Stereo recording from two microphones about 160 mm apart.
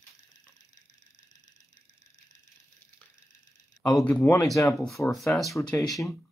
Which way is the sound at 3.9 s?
5° left (ahead or behind).